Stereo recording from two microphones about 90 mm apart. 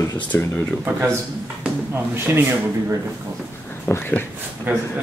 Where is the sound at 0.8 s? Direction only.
30° right (ahead or behind).